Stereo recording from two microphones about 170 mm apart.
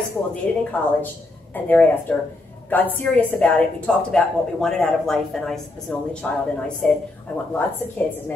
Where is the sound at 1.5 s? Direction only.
10° left (ahead or behind).